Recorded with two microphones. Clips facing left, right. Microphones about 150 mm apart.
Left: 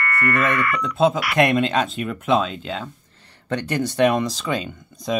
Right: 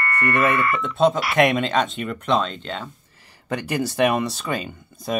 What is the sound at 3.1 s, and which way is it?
Speech, 10° right (ahead or behind).